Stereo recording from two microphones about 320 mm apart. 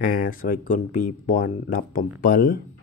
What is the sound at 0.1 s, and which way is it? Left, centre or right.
Speech, left.